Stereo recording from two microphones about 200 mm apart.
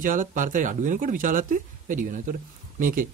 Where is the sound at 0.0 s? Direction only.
40° right (ahead or behind).